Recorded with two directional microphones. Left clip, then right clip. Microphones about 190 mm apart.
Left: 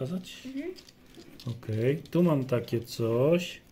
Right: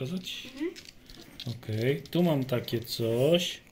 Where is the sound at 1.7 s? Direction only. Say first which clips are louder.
Left 1 dB; 30° left (ahead or behind).